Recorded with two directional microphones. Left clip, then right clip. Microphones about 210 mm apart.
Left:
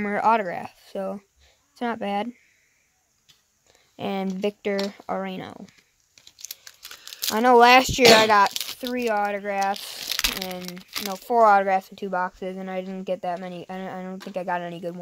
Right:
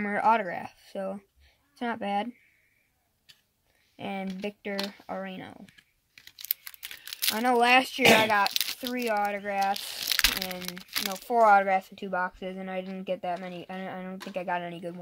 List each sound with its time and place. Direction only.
0.0 s speech: 45° left (ahead or behind)
3.9 s speech: 50° left (ahead or behind)
6.1 s a sound: 5° left (ahead or behind)
7.3 s speech: 45° left (ahead or behind)
8.5 s a sound: 15° left (ahead or behind)
8.9 s speech: 50° left (ahead or behind)
9.9 s speech: 10° left (ahead or behind)
11.1 s speech: 45° left (ahead or behind)